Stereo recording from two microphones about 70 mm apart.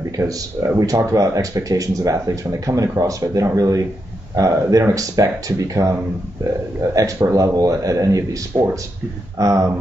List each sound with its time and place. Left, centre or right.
0.2 s speech: right
7.0 s speech: right